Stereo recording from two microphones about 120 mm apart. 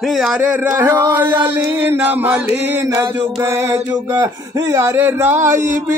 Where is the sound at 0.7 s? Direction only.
25° right (ahead or behind).